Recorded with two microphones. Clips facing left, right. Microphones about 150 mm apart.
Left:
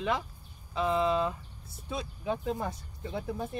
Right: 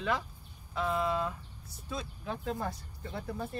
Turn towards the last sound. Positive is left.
turn(degrees=20)  # may be behind; listen again after turning